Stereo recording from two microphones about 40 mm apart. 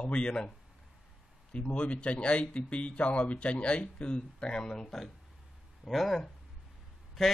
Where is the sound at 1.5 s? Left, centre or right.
Left.